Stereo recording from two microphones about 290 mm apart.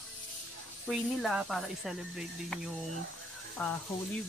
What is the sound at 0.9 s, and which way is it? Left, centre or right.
Speech, centre.